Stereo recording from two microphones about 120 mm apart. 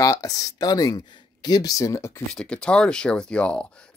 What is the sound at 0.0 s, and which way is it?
Speech, 30° left (ahead or behind).